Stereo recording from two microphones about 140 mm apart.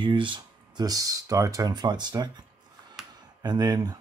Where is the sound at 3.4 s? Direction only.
30° right (ahead or behind).